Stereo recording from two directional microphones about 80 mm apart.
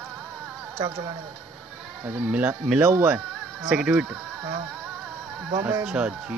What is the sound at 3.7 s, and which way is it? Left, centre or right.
Speech, centre.